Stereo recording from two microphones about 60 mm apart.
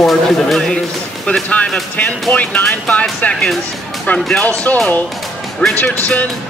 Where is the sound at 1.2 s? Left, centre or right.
Centre.